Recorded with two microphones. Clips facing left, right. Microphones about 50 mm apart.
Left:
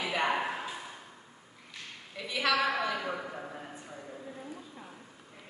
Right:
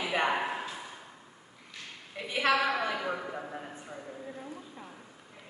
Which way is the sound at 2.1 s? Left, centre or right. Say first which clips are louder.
Right 2 dB; right.